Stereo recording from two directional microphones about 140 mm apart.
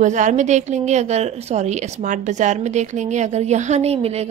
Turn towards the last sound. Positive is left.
turn(degrees=-50)  # may be behind; listen again after turning